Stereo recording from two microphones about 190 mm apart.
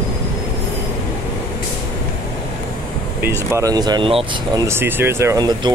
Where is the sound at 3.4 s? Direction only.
15° right (ahead or behind).